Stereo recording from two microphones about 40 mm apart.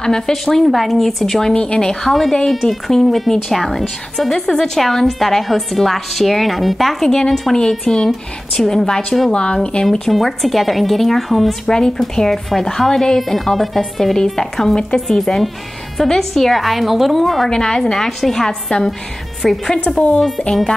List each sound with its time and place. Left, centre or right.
0.3 s speech: centre
1.5 s speech: left
2.5 s a woman's voice: centre
7.1 s speech: centre
9.8 s a woman's voice: centre
11.6 s a woman's voice: centre
17.5 s speech: centre
19.4 s a woman's voice: centre